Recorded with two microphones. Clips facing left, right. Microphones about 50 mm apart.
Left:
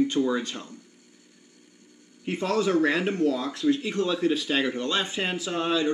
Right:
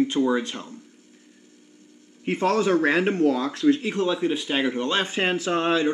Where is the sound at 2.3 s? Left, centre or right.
Right.